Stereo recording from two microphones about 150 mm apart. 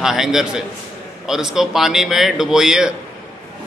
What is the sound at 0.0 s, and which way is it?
A man's voice, centre (ahead or behind).